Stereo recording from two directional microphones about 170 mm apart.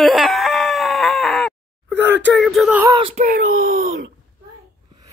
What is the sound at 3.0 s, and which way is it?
Speech, 35° right (ahead or behind).